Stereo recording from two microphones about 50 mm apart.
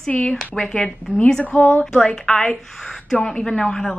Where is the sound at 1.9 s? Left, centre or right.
Centre.